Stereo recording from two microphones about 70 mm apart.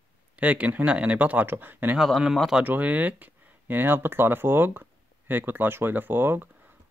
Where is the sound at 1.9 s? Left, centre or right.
Centre.